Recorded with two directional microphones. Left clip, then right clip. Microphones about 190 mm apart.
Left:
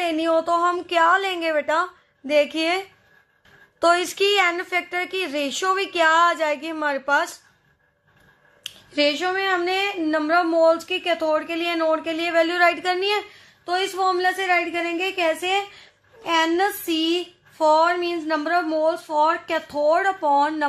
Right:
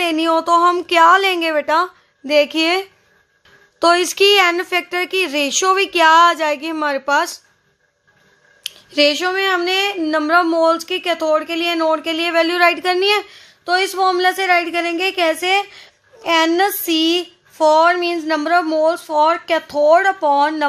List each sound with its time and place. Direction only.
0.0 s a woman's voice: 40° right (ahead or behind)
8.6 s speech: 40° right (ahead or behind)